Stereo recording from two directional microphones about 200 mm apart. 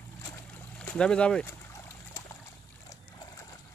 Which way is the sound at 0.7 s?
5° left (ahead or behind).